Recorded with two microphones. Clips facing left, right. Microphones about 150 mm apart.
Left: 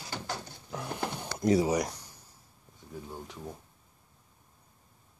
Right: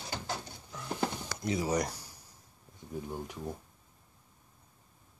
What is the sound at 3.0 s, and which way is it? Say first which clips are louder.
Speech: right 2 dB; 10° right (ahead or behind).